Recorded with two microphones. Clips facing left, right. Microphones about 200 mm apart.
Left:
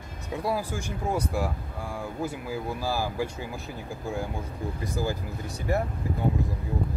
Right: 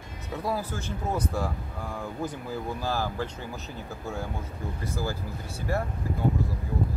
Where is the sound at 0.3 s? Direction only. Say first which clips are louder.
Left 2 dB; 10° left (ahead or behind).